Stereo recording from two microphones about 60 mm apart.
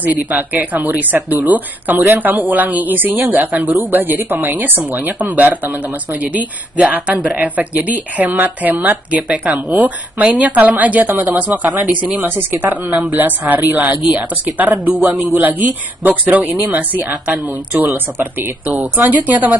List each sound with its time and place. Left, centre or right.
0.0 s speech: right